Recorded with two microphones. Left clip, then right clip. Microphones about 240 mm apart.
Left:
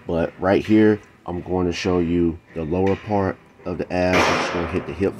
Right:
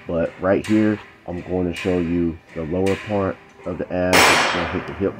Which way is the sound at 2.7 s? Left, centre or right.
Left.